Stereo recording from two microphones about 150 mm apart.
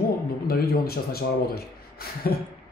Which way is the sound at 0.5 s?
90° left.